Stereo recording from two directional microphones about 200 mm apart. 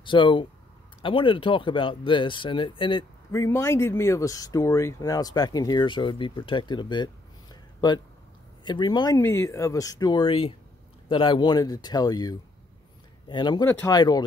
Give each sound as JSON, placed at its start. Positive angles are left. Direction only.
{"t": 0.0, "sound": "speech", "side_deg": 25}